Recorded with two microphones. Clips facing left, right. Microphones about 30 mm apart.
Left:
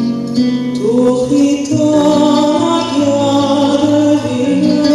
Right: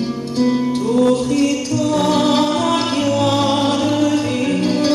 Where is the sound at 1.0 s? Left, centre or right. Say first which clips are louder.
Left 4 dB; right.